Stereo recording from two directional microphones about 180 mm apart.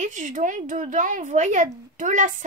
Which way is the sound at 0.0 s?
45° right (ahead or behind).